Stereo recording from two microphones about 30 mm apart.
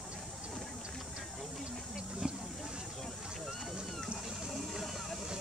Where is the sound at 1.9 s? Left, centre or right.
Right.